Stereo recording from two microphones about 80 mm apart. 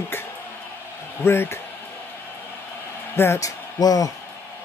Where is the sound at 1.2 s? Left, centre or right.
Left.